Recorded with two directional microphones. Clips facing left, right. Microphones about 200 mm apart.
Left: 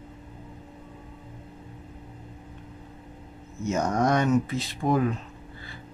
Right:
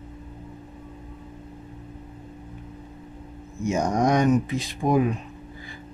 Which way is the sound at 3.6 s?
15° right (ahead or behind).